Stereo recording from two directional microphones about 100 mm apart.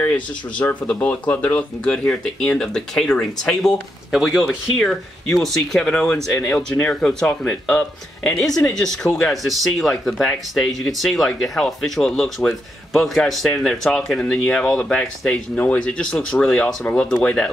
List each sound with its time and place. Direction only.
0.0 s speech: 20° left (ahead or behind)